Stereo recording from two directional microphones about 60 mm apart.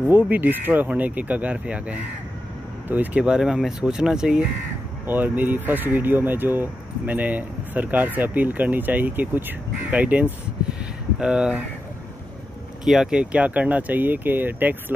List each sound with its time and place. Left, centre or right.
0.1 s speech: right
3.2 s speech: centre
5.0 s speech: right
11.1 s speech: centre
12.8 s speech: centre
13.1 s speech: centre